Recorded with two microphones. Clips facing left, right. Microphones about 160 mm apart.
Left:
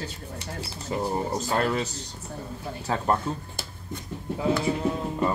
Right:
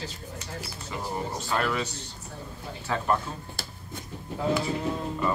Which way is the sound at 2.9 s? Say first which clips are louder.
Left 2 dB; 30° left (ahead or behind).